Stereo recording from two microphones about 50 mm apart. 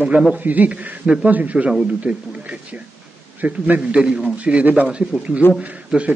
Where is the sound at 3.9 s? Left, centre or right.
Centre.